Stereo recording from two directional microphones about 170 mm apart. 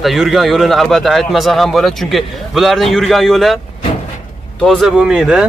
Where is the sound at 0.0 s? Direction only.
Centre (ahead or behind).